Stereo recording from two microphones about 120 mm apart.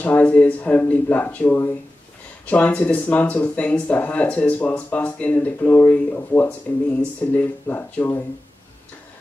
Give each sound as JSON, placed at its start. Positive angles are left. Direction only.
{"t": 0.0, "sound": "speech", "side_deg": 15}